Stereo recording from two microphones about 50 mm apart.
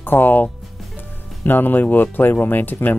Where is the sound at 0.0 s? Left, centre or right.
Left.